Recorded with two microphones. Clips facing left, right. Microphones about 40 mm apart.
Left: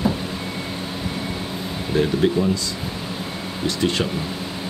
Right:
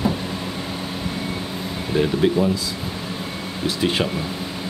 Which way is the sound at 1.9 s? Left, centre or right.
Centre.